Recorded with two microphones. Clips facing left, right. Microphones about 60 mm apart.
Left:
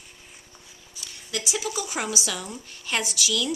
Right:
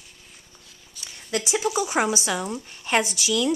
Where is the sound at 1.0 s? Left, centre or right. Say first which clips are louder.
Right 1 dB; centre.